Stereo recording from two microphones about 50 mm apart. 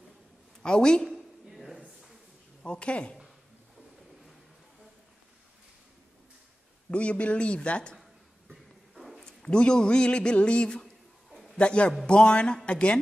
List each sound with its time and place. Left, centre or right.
0.6 s speech: centre
1.1 s a sound: centre
2.6 s a man's voice: left
6.9 s a man's voice: left
8.9 s a sound: centre
9.2 s a man's voice: centre